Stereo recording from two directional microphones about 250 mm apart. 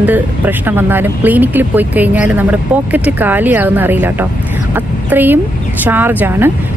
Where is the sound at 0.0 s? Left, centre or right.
Centre.